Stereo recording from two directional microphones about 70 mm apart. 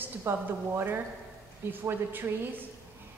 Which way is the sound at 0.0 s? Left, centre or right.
Right.